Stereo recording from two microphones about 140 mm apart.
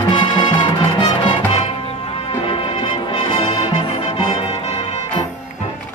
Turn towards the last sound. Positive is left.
turn(degrees=40)  # may be behind; listen again after turning